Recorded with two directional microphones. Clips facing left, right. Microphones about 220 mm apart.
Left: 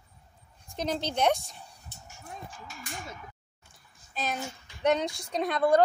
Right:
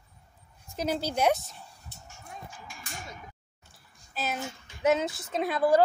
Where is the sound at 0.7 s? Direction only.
10° right (ahead or behind).